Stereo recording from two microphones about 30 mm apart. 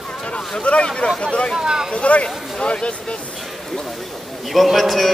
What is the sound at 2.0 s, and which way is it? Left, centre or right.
Speech, left.